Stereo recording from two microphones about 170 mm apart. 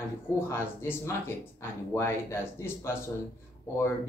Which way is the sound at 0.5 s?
15° left (ahead or behind).